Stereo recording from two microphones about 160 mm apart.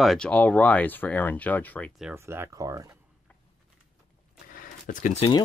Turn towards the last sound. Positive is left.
turn(degrees=55)  # may be behind; listen again after turning